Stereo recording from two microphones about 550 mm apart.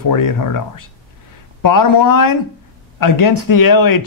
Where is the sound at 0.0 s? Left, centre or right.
Left.